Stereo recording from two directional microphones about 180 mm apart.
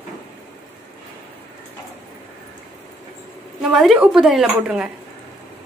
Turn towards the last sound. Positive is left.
turn(degrees=-5)  # may be behind; listen again after turning